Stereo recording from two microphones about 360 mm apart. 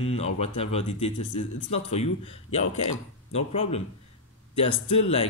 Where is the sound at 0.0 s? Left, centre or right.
Centre.